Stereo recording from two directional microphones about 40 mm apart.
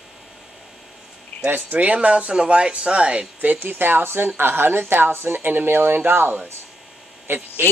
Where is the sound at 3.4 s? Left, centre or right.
Right.